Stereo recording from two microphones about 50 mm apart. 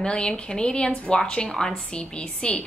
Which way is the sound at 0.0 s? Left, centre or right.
Centre.